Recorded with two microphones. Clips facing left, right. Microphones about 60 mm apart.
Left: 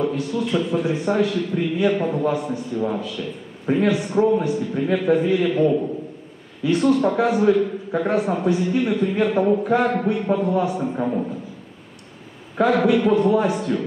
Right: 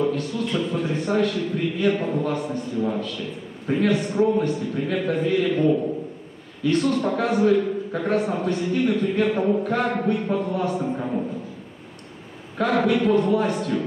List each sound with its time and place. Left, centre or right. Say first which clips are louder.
0.0 s a man's voice: left 1 dB; centre
12.5 s a man's voice: left 3 dB; centre